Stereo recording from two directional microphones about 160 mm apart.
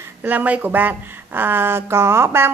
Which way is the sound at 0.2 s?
10° right (ahead or behind).